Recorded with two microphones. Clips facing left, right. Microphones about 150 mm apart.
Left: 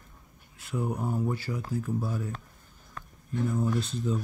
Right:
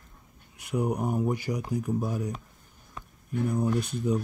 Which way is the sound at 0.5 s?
15° right (ahead or behind).